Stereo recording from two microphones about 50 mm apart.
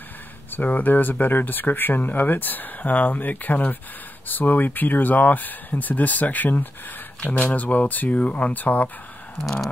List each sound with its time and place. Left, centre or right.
0.5 s speech: left